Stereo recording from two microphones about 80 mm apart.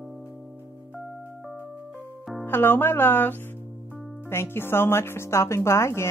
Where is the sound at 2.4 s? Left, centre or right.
Left.